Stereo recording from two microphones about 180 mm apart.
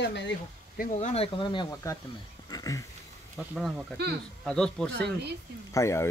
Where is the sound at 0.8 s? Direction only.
40° left (ahead or behind); by 2.0 s 20° left (ahead or behind).